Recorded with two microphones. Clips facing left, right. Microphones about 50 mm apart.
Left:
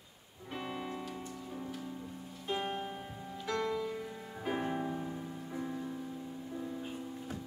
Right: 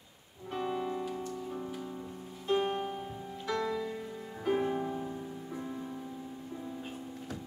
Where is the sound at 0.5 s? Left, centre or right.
Centre.